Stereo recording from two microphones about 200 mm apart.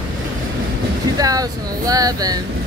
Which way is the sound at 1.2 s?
20° right (ahead or behind).